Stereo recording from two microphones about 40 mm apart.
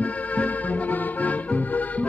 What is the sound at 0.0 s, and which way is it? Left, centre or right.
Music, left.